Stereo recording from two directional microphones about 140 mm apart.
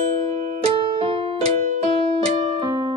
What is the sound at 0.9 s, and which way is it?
Music, 45° right (ahead or behind).